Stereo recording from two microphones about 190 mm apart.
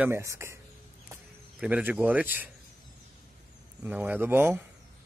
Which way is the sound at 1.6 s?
10° right (ahead or behind).